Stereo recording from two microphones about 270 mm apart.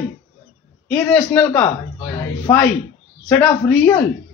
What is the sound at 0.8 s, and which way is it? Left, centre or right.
A man's voice, centre.